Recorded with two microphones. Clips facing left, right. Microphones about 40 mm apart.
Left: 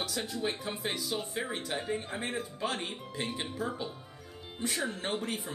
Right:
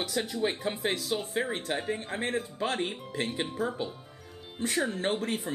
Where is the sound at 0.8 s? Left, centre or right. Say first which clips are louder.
Right 4 dB; right.